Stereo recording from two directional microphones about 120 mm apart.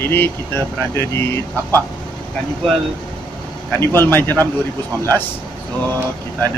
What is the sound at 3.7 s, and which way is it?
Speech, 20° left (ahead or behind).